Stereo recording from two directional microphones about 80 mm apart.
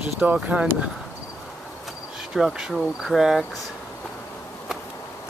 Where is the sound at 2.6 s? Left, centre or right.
Centre.